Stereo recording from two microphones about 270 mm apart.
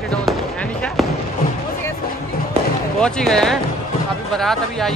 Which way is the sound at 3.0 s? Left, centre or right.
Centre.